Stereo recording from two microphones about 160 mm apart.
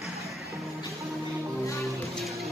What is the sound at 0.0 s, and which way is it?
Music, centre (ahead or behind).